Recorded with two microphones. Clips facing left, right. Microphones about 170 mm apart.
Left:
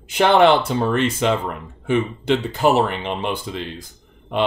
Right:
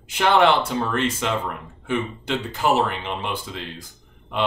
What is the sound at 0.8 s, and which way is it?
Speech, 25° left (ahead or behind).